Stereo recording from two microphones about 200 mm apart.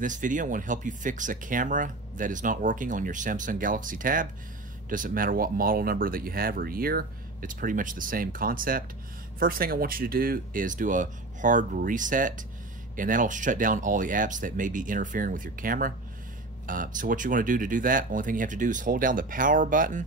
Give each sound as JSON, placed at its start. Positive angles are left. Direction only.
{"t": 0.0, "sound": "speech", "side_deg": -40}